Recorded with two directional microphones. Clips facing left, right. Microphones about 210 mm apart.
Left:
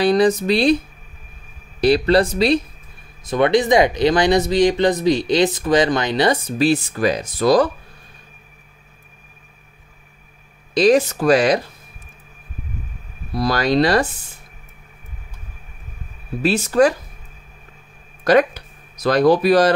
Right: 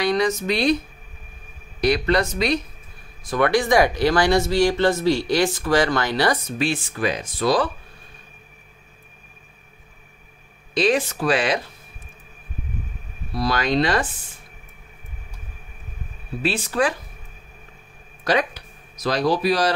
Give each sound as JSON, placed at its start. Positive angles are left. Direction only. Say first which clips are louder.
{"t": 0.0, "sound": "speech", "louder": "left 6 dB", "side_deg": 35}
{"t": 1.8, "sound": "speech", "louder": "left 5 dB", "side_deg": 30}
{"t": 3.3, "sound": "speech", "louder": "left 4 dB", "side_deg": 20}
{"t": 6.6, "sound": "speech", "louder": "left 8 dB", "side_deg": 40}
{"t": 10.7, "sound": "speech", "louder": "left 6 dB", "side_deg": 40}
{"t": 13.4, "sound": "speech", "louder": "left 4 dB", "side_deg": 40}
{"t": 16.4, "sound": "speech", "louder": "left 7 dB", "side_deg": 40}
{"t": 18.2, "sound": "speech", "louder": "left 7 dB", "side_deg": 50}